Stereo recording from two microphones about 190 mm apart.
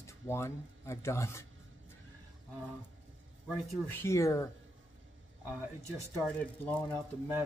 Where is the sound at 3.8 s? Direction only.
10° left (ahead or behind).